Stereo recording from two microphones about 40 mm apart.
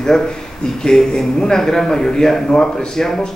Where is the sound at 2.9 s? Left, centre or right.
Centre.